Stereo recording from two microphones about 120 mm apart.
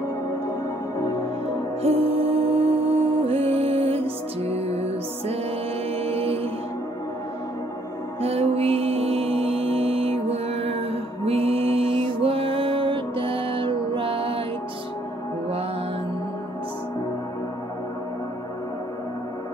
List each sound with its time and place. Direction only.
1.8 s music: 55° right (ahead or behind)
5.9 s mantra: 55° right (ahead or behind)
8.2 s music: 55° right (ahead or behind)